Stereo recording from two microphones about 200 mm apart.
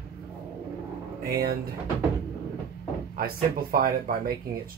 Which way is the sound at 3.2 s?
45° right (ahead or behind).